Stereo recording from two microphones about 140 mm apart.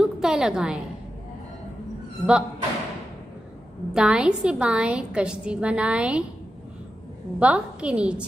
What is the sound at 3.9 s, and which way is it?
A woman's voice, 5° right (ahead or behind).